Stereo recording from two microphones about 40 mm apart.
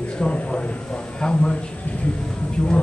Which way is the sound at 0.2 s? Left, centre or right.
Left.